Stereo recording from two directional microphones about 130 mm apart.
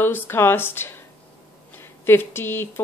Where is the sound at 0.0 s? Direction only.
15° left (ahead or behind).